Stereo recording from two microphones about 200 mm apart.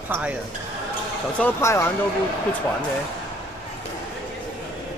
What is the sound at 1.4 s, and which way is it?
Speech, 10° left (ahead or behind).